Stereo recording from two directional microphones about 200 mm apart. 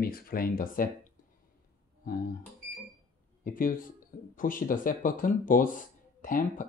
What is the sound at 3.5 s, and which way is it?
Speech, 45° left (ahead or behind).